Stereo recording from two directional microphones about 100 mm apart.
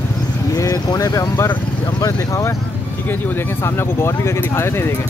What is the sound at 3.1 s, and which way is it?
Speech, 20° left (ahead or behind).